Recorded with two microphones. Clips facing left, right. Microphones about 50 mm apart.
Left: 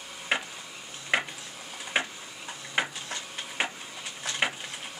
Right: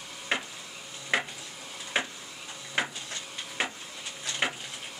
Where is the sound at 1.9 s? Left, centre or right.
Centre.